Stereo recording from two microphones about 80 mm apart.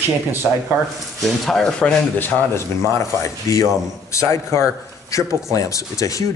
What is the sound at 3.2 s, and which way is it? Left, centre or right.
A man's voice, left.